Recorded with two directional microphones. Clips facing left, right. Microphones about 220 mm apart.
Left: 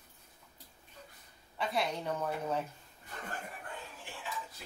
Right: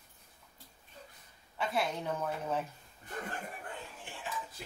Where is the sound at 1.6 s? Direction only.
Centre (ahead or behind).